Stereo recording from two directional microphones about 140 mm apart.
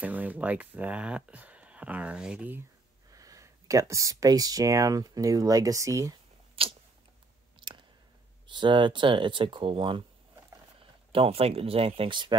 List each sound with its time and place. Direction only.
0.0 s speech: 10° right (ahead or behind)
3.1 s speech: 25° right (ahead or behind)
6.6 s a sound: 40° right (ahead or behind)
8.5 s speech: 35° right (ahead or behind)